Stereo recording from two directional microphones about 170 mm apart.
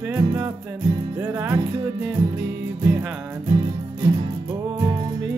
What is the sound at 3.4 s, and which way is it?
Music, 20° right (ahead or behind).